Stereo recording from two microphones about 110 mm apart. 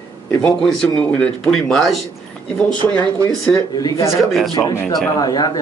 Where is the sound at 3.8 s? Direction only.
35° left (ahead or behind).